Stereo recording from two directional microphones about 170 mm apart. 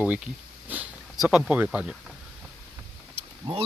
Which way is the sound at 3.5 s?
25° right (ahead or behind).